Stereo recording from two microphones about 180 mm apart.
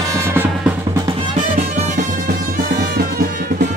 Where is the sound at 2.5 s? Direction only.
55° right (ahead or behind).